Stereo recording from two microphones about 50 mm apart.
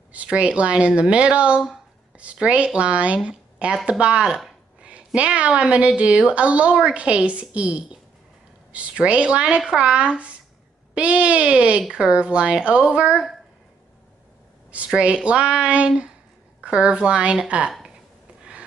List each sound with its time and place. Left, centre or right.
0.1 s a woman's voice: right
9.9 s a woman's voice: right
14.9 s a woman's voice: right